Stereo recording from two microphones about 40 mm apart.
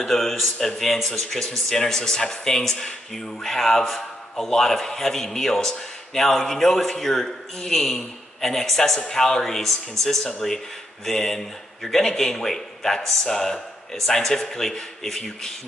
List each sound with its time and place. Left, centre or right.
0.0 s speech: centre